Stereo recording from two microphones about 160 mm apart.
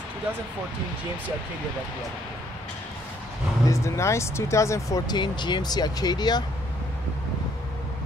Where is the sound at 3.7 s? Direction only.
20° left (ahead or behind).